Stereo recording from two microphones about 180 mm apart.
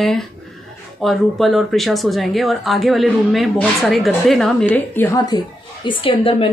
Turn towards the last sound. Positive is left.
turn(degrees=30)  # may be behind; listen again after turning